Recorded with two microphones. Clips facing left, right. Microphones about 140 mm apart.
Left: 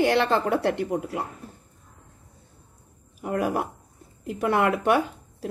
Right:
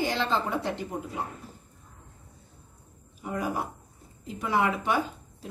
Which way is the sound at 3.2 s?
65° left (ahead or behind).